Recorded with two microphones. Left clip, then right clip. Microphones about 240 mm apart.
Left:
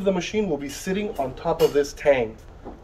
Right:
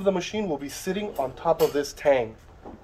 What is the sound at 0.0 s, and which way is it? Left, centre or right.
Speech, right.